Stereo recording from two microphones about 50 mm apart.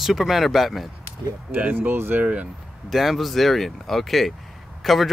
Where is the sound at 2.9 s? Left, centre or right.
Centre.